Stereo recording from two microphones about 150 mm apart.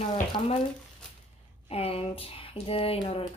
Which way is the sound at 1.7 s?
40° left (ahead or behind).